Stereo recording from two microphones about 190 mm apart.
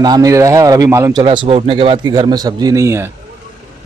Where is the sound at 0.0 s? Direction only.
20° right (ahead or behind).